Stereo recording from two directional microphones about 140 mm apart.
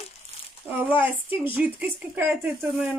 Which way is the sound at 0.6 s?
10° right (ahead or behind).